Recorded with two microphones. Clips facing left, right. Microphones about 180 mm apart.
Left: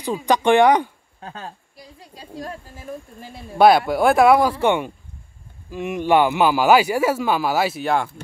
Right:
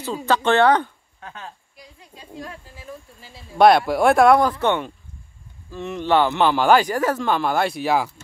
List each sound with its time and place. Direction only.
0.0 s speech: 15° left (ahead or behind)
1.2 s speech: 35° left (ahead or behind); by 3.4 s 55° left (ahead or behind)
3.5 s speech: centre (ahead or behind)